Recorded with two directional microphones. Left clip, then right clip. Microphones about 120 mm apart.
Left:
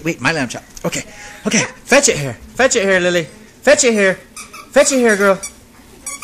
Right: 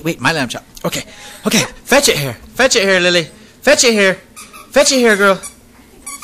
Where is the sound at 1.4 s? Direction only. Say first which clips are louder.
Right 2 dB; 20° right (ahead or behind).